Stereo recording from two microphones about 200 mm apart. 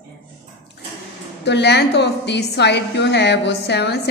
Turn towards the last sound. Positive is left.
turn(degrees=55)  # may be behind; listen again after turning